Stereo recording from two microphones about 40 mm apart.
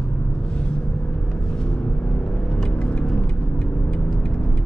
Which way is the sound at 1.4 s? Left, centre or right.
Centre.